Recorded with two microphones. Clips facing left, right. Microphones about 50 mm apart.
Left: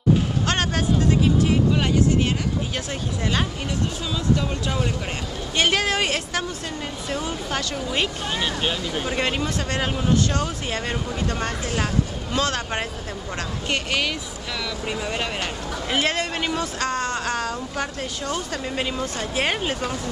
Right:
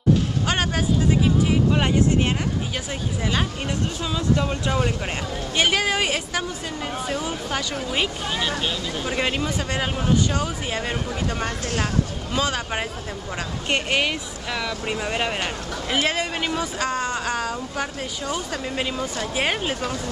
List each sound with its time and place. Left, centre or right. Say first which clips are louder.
0.5 s a sound: right 1 dB; centre
4.1 s speech: right 1 dB; centre
13.7 s speech: right 2 dB; right
15.9 s speech: even; centre